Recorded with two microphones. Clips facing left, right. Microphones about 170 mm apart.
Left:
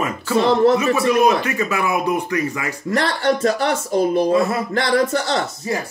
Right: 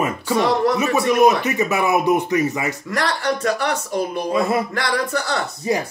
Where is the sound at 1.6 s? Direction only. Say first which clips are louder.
Right 2 dB; 20° right (ahead or behind).